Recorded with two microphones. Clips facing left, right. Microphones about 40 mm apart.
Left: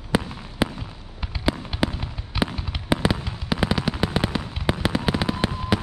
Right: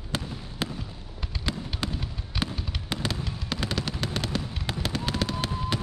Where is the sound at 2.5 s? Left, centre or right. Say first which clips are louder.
Left 8 dB; centre.